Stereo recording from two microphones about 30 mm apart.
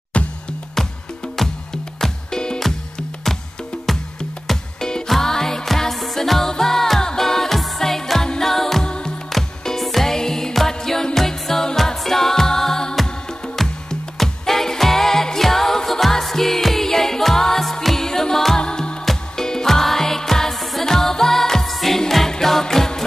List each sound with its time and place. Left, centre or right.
0.1 s music: left
0.8 s music: centre
2.0 s music: centre
3.7 s music: left
5.0 s music: centre
5.9 s music: centre
8.8 s music: left
9.3 s music: centre
10.0 s music: centre
14.1 s music: centre
18.6 s music: left
19.3 s music: centre